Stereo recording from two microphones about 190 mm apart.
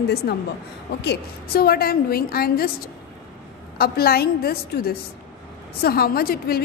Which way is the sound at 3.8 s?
55° left (ahead or behind).